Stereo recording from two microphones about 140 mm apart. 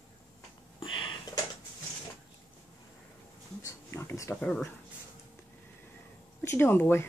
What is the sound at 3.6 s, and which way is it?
Dog, 20° left (ahead or behind).